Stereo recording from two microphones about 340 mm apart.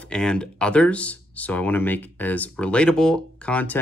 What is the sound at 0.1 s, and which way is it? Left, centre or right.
Speech, centre.